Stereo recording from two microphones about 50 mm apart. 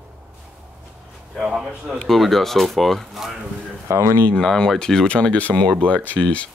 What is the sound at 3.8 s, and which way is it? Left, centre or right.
Speech, right.